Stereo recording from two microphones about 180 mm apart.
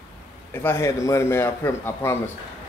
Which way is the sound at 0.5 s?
15° left (ahead or behind).